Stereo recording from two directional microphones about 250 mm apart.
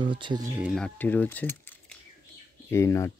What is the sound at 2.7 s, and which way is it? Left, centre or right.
Speech, centre.